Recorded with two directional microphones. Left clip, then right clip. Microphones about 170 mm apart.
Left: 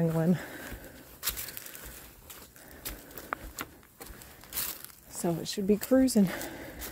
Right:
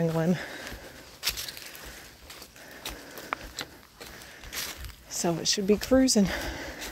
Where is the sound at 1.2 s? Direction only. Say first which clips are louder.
Right 6 dB; 15° left (ahead or behind).